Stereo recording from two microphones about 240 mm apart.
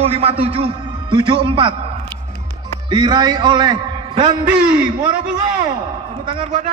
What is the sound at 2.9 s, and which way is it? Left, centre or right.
A man's voice, centre.